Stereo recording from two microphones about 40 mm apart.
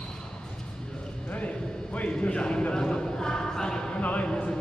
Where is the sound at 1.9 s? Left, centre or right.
Left; by 3.8 s centre.